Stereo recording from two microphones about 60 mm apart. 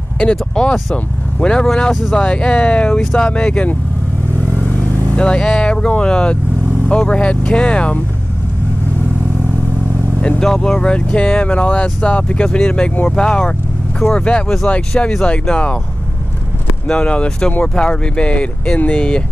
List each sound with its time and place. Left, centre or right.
0.2 s speech: centre
5.1 s speech: centre
10.2 s speech: centre
16.8 s speech: centre